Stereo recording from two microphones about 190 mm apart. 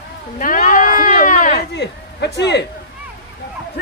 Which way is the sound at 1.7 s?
60° left (ahead or behind).